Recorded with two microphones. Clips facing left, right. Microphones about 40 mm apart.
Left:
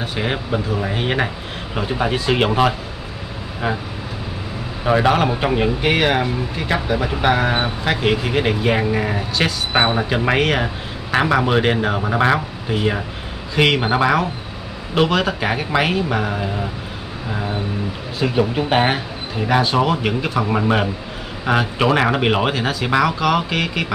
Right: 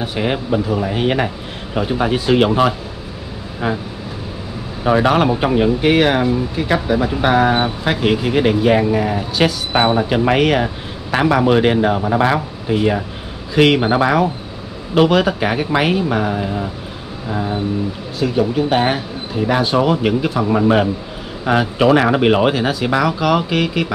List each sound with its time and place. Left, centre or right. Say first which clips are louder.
0.0 s speech: right 3 dB; centre
4.8 s speech: right 2 dB; centre
18.2 s speech: right 2 dB; centre